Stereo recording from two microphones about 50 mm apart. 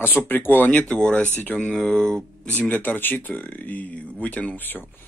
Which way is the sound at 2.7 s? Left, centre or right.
Left.